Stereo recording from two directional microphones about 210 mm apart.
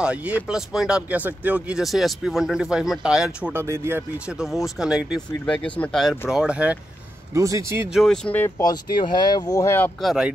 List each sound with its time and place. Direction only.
0.0 s speech: 5° right (ahead or behind)
8.0 s speech: 5° left (ahead or behind)
8.5 s speech: 20° left (ahead or behind)